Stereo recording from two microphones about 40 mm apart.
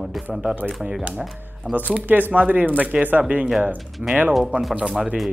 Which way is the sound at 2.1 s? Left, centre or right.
Right.